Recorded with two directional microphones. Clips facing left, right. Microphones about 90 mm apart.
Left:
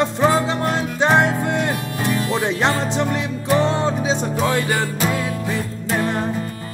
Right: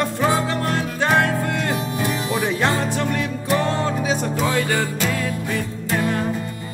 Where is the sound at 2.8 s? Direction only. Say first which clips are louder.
Left 1 dB; 20° left (ahead or behind).